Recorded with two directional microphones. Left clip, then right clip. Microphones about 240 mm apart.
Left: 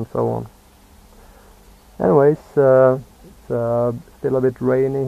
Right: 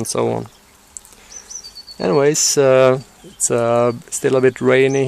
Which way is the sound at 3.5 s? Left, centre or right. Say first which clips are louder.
Right 4 dB; right.